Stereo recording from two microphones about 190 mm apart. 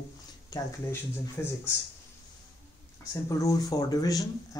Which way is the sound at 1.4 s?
10° left (ahead or behind).